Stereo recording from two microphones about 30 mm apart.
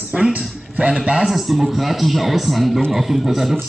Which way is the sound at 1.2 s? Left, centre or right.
Centre.